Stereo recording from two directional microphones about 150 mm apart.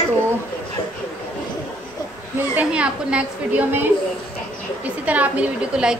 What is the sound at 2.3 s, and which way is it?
A woman's voice, 10° right (ahead or behind).